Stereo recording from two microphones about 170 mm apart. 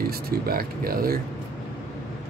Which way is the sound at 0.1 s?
60° right (ahead or behind).